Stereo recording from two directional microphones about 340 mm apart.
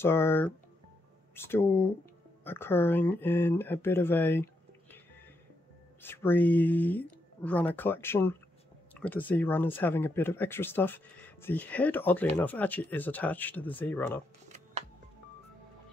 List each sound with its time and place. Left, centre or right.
0.0 s speech: centre
6.0 s speech: centre
14.5 s music: centre